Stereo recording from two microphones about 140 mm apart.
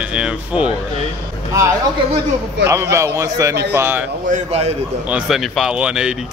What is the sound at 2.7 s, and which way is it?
A man's voice, 20° right (ahead or behind).